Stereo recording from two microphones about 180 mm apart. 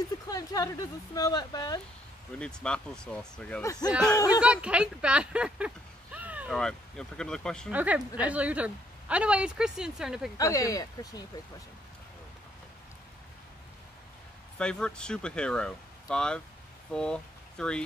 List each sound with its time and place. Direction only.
0.3 s speech: 20° left (ahead or behind)
2.3 s speech: 5° left (ahead or behind)
3.6 s speech: 20° left (ahead or behind)
3.9 s speech: 5° left (ahead or behind)
6.1 s a sound: 10° right (ahead or behind)
6.5 s speech: 5° left (ahead or behind)
7.7 s speech: 10° right (ahead or behind)
10.3 s speech: 20° left (ahead or behind)
14.6 s speech: 5° left (ahead or behind)